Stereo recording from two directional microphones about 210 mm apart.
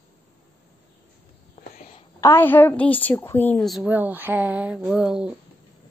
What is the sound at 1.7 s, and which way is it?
Whispering, 35° left (ahead or behind).